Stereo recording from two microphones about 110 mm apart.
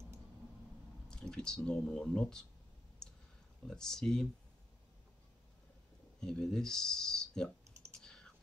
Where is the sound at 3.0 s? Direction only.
5° left (ahead or behind).